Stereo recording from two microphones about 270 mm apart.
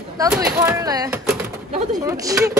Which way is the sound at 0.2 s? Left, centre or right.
Centre.